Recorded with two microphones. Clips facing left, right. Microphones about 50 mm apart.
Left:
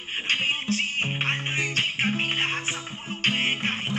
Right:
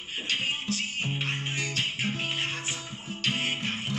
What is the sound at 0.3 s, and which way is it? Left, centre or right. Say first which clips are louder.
Music: left 5 dB; left.